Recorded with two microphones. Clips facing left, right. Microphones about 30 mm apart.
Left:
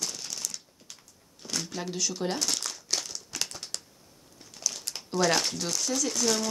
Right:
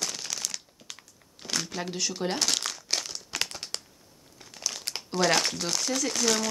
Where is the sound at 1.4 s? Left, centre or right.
Right.